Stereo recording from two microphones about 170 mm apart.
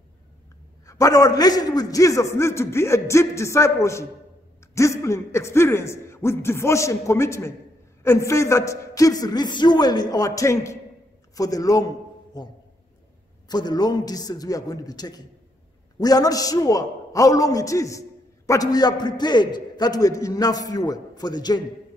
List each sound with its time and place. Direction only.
0.8 s a man's voice: 20° left (ahead or behind)
4.6 s a sound: 15° left (ahead or behind)
5.0 s a man's voice: 15° left (ahead or behind)
13.5 s a man's voice: 25° left (ahead or behind)